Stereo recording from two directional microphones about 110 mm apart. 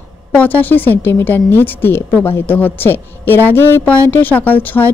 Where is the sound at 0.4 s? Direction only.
15° left (ahead or behind).